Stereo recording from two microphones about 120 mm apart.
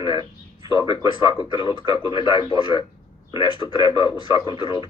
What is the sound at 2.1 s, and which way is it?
A man's voice, 45° left (ahead or behind).